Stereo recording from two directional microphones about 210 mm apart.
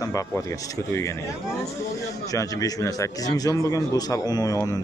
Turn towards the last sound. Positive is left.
turn(degrees=15)  # may be behind; listen again after turning